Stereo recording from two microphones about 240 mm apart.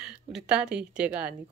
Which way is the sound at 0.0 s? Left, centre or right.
Centre.